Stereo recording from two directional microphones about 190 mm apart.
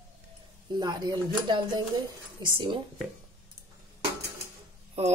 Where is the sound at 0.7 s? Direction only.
25° right (ahead or behind).